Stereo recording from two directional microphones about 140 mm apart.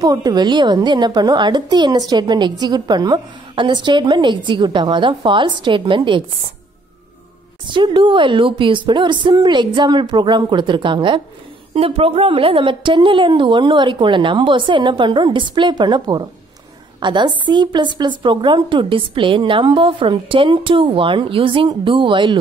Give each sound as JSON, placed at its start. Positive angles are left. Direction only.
{"t": 0.0, "sound": "a woman's voice", "side_deg": -30}
{"t": 7.6, "sound": "a woman's voice", "side_deg": -35}